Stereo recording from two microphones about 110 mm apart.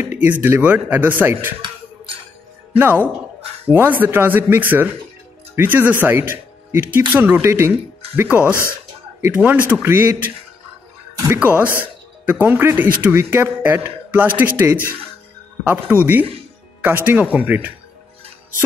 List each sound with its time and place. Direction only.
0.0 s a man's voice: 15° right (ahead or behind)
2.7 s a man's voice: 15° right (ahead or behind)
11.3 s a man's voice: 15° right (ahead or behind)